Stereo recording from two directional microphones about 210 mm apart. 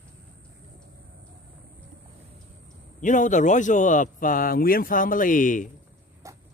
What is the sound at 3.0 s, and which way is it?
Speech, 35° left (ahead or behind).